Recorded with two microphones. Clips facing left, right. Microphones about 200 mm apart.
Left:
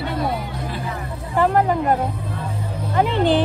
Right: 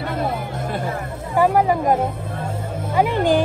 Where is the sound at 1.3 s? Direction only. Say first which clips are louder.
Right 1 dB; 10° right (ahead or behind).